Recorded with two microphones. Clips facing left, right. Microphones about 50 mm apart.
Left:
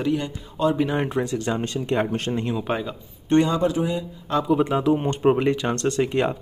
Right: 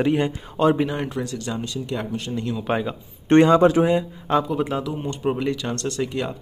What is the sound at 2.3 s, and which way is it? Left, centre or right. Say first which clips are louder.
Speech: left 2 dB; left.